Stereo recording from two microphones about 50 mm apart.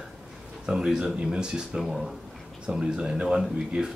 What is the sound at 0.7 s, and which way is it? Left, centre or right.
Speech, centre.